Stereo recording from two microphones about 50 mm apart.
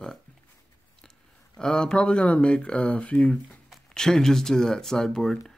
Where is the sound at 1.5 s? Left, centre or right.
Centre.